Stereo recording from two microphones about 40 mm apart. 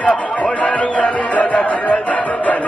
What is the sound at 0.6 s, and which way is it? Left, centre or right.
Music, left.